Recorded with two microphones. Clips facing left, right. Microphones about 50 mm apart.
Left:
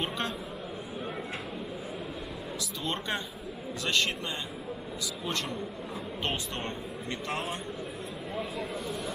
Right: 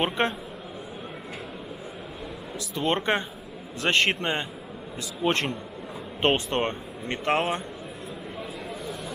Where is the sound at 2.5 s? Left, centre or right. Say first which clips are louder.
Right 9 dB; right.